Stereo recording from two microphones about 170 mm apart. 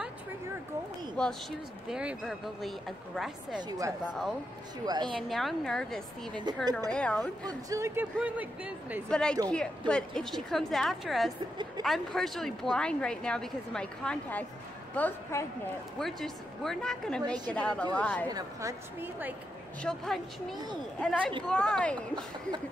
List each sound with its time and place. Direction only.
1.2 s a woman's voice: 5° left (ahead or behind)
3.6 s a woman's voice: 20° right (ahead or behind)
5.3 s a woman's voice: centre (ahead or behind)
6.3 s a woman's voice: 25° right (ahead or behind)
6.9 s a woman's voice: 5° left (ahead or behind)
7.4 s speech: 15° right (ahead or behind)
9.1 s a woman's voice: 5° left (ahead or behind)
18.3 s speech: 20° right (ahead or behind)
19.8 s a woman's voice: 5° left (ahead or behind)
21.5 s a woman's voice: 5° left (ahead or behind)